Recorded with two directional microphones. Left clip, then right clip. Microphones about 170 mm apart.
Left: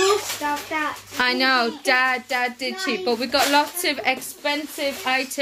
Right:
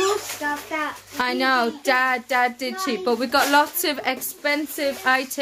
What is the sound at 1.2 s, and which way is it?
Speech, 15° right (ahead or behind).